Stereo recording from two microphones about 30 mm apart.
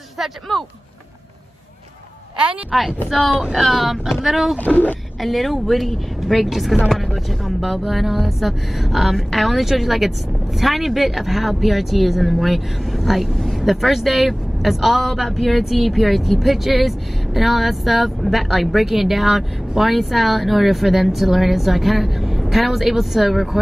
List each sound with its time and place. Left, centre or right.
0.5 s speech: centre
2.7 s a woman's voice: centre
3.5 s speech: centre
4.6 s speech: left
5.2 s speech: centre